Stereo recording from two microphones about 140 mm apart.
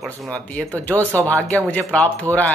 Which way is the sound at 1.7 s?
10° left (ahead or behind).